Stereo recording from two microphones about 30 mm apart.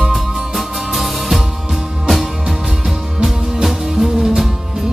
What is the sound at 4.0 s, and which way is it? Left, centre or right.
Music, centre.